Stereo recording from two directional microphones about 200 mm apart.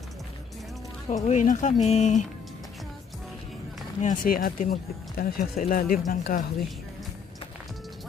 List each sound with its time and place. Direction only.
1.0 s speech: 35° left (ahead or behind)
4.0 s speech: 40° left (ahead or behind)